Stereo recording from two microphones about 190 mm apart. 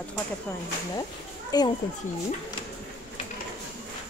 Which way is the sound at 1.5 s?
20° left (ahead or behind).